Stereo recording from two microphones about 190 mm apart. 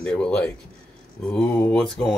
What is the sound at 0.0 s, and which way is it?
Speech, 5° left (ahead or behind).